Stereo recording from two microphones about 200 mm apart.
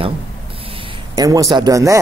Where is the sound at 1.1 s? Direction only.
15° right (ahead or behind).